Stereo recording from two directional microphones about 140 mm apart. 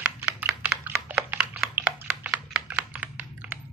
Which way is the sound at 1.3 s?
10° right (ahead or behind).